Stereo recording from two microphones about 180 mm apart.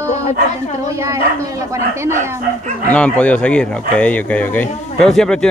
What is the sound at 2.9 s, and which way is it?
Speech, 5° left (ahead or behind).